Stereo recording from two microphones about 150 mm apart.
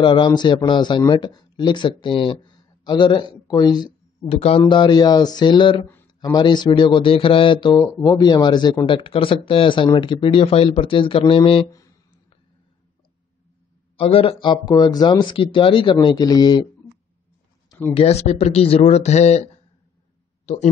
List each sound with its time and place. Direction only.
0.0 s speech: 30° left (ahead or behind)
4.3 s speech: 40° left (ahead or behind)
13.9 s speech: 40° left (ahead or behind)
17.9 s speech: 45° left (ahead or behind)